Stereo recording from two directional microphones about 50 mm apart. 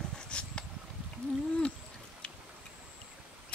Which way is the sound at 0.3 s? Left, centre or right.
Left.